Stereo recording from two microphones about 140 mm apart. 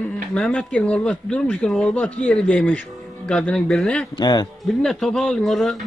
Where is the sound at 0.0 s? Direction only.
10° left (ahead or behind).